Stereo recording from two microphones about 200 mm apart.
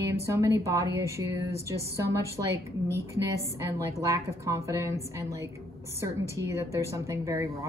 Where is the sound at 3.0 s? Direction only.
15° right (ahead or behind).